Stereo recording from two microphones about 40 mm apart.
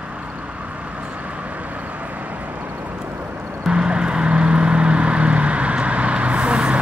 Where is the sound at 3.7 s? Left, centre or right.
Right.